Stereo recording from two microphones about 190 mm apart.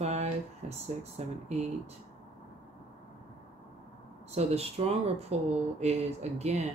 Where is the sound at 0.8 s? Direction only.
35° right (ahead or behind).